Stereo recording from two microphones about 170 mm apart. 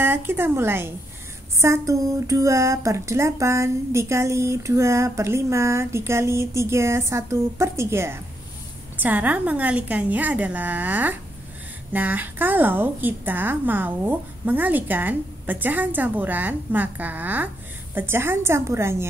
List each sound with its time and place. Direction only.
0.0 s speech: 15° right (ahead or behind)